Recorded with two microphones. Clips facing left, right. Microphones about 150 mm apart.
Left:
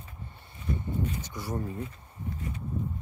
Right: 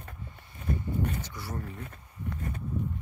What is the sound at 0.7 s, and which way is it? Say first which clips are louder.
Walk: right 1 dB; 55° right (ahead or behind).